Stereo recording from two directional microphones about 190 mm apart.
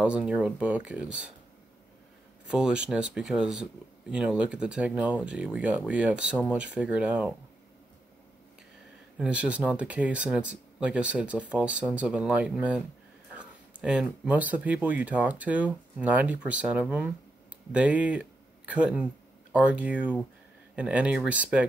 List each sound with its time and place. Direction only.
0.0 s speech: 5° right (ahead or behind)
2.4 s speech: 5° right (ahead or behind)
9.2 s speech: 5° right (ahead or behind)